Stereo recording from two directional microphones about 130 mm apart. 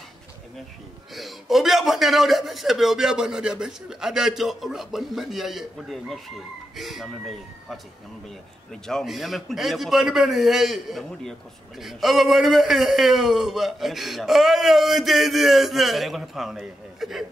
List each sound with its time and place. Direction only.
1.1 s a man's voice: centre (ahead or behind)
8.8 s a man's voice: centre (ahead or behind)